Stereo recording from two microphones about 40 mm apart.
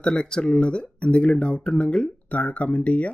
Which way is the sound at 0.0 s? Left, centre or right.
Left.